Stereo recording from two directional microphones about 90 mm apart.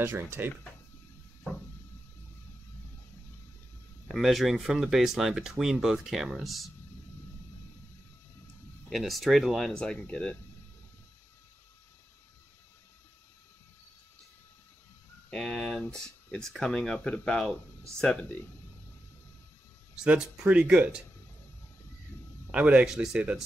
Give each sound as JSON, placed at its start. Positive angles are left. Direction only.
{"t": 0.0, "sound": "speech", "side_deg": -25}
{"t": 4.1, "sound": "speech", "side_deg": 0}
{"t": 8.9, "sound": "speech", "side_deg": 0}
{"t": 15.2, "sound": "speech", "side_deg": 10}
{"t": 20.0, "sound": "speech", "side_deg": -10}
{"t": 22.5, "sound": "speech", "side_deg": -10}